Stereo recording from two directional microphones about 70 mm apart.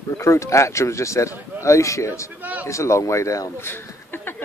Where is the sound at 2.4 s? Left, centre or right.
Right.